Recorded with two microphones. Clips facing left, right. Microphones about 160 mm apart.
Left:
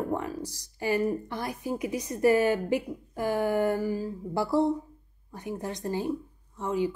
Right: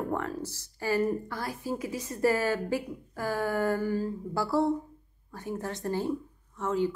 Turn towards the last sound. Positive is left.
turn(degrees=15)  # may be behind; listen again after turning